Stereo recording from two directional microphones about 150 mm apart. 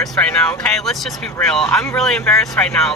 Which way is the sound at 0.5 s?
5° left (ahead or behind).